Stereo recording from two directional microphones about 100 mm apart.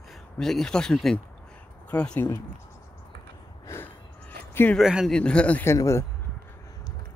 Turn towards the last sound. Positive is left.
turn(degrees=30)  # may be behind; listen again after turning